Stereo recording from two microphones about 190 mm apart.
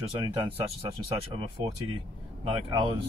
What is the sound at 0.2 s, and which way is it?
Speech, 25° right (ahead or behind).